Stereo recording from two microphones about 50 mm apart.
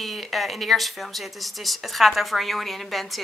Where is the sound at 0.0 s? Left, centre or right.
Centre.